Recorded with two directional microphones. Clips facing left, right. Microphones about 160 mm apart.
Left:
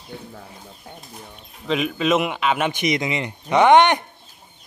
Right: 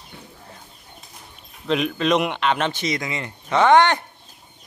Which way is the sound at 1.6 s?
Centre (ahead or behind).